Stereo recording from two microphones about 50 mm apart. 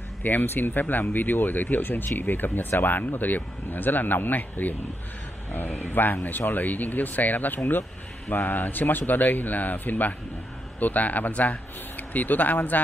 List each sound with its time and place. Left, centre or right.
0.2 s speech: left